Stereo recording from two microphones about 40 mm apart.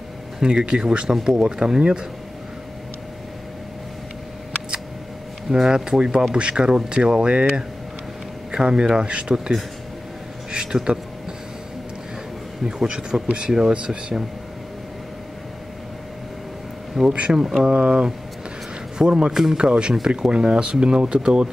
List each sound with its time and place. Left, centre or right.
0.4 s speech: right
1.8 s speech: right
5.5 s speech: centre
6.3 s speech: right
10.5 s speech: right
12.6 s speech: centre
17.0 s speech: centre
17.6 s speech: right
19.0 s speech: right